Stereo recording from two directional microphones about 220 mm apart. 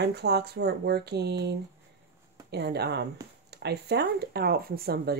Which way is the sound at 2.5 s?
50° right (ahead or behind).